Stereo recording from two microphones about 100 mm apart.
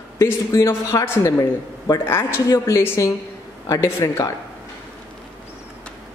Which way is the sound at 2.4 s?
35° left (ahead or behind).